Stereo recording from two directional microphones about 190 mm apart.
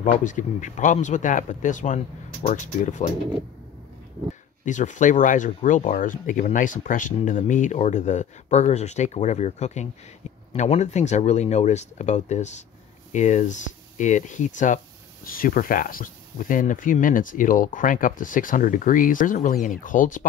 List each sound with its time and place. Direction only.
0.0 s speech: 40° left (ahead or behind)
4.6 s speech: 40° left (ahead or behind)